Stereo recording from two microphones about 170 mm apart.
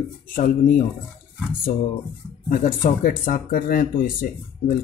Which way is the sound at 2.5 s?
55° left (ahead or behind).